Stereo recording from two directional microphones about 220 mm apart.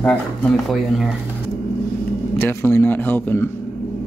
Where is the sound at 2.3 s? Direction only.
10° left (ahead or behind).